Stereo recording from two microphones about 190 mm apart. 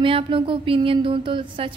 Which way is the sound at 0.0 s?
30° right (ahead or behind).